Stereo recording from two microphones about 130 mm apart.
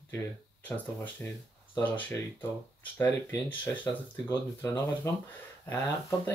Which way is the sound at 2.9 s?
15° left (ahead or behind).